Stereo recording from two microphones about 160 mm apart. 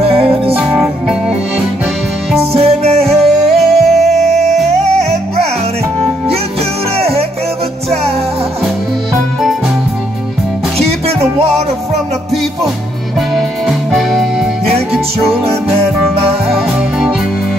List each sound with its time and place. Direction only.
0.0 s music: 35° right (ahead or behind)
0.7 s music: centre (ahead or behind)
2.3 s music: 40° right (ahead or behind)
3.1 s music: centre (ahead or behind)
7.0 s music: 40° right (ahead or behind)
10.8 s music: 40° right (ahead or behind)